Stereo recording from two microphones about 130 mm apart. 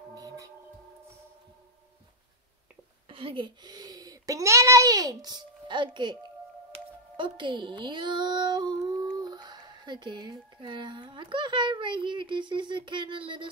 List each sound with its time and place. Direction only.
0.1 s music: 30° right (ahead or behind)
3.1 s a child's voice: 40° right (ahead or behind)